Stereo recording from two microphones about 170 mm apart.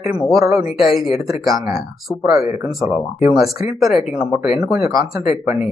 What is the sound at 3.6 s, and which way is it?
Speech, 20° right (ahead or behind).